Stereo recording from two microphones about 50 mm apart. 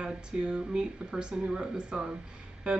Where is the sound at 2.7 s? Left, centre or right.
Right.